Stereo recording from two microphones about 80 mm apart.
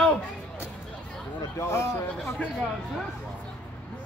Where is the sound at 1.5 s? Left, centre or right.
Left.